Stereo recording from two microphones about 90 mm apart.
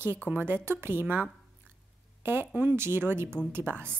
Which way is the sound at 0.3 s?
25° right (ahead or behind).